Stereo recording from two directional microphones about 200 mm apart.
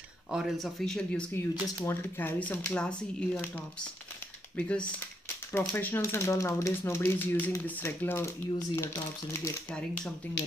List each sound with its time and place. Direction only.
0.3 s speech: centre (ahead or behind)
1.5 s speech: 20° left (ahead or behind)
2.0 s speech: 10° left (ahead or behind)